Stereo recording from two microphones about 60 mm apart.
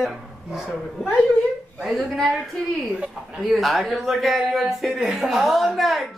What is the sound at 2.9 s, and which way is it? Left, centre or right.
Speech, centre.